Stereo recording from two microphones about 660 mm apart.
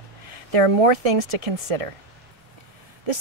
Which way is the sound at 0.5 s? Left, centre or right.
Right.